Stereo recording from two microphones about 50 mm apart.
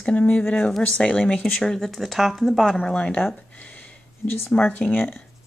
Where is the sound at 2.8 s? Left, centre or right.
Left.